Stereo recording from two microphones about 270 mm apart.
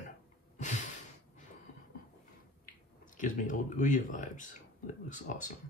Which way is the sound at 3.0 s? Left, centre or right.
Left.